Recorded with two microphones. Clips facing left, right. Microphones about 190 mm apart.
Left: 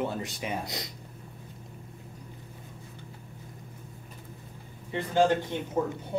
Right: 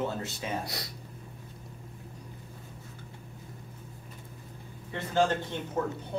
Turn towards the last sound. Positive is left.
turn(degrees=10)  # may be behind; listen again after turning